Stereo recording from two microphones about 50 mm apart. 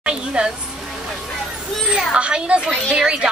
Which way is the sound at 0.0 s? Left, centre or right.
Right.